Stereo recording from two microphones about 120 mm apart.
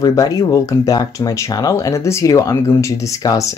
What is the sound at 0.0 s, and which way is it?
Speech, 30° left (ahead or behind).